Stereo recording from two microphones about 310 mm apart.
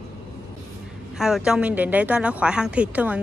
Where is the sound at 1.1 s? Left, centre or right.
Centre.